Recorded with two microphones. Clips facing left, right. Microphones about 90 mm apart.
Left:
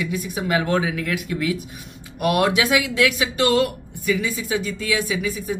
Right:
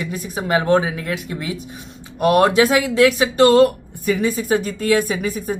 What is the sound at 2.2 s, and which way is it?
Speech, 35° right (ahead or behind).